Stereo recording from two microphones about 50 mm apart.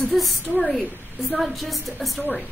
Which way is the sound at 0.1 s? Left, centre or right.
Centre.